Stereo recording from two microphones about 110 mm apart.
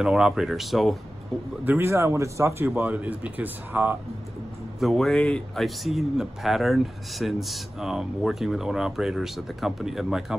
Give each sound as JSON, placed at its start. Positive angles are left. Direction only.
{"t": 0.0, "sound": "speech", "side_deg": -5}
{"t": 1.6, "sound": "speech", "side_deg": -20}
{"t": 2.7, "sound": "speech", "side_deg": -15}
{"t": 4.7, "sound": "speech", "side_deg": 0}
{"t": 5.9, "sound": "speech", "side_deg": 0}